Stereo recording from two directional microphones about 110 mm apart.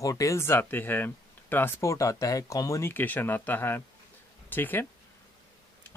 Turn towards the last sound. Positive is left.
turn(degrees=20)  # may be behind; listen again after turning